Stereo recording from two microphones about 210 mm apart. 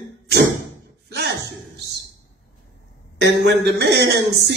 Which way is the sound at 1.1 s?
50° right (ahead or behind).